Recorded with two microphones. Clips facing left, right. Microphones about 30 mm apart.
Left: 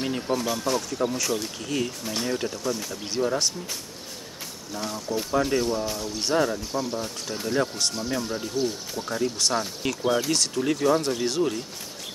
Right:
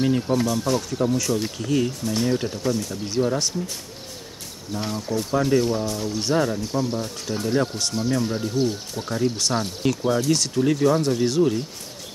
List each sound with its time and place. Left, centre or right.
0.0 s speech: centre
4.7 s speech: centre
5.3 s speech: centre
10.0 s speech: centre